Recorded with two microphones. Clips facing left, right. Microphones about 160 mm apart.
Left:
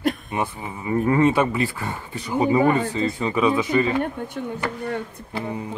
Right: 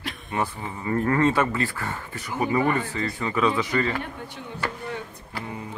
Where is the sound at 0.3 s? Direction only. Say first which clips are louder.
Left 1 dB; 15° left (ahead or behind).